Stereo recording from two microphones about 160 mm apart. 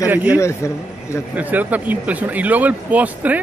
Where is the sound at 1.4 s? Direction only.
10° right (ahead or behind).